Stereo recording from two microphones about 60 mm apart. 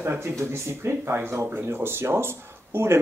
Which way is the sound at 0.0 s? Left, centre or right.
Right.